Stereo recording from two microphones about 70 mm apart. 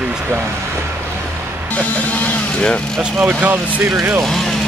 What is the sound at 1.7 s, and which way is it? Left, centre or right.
Speech, centre.